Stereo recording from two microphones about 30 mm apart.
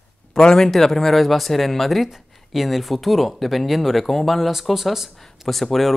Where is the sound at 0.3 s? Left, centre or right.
Left.